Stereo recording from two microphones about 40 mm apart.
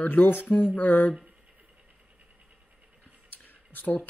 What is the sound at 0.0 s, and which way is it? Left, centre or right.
Speech, left.